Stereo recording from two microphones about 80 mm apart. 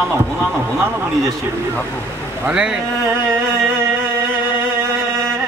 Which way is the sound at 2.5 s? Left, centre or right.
Centre.